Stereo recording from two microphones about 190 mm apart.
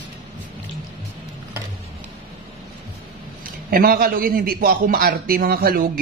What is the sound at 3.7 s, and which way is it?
A man's voice, 50° right (ahead or behind).